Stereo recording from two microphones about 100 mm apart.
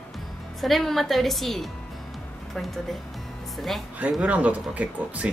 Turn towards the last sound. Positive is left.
turn(degrees=-15)  # may be behind; listen again after turning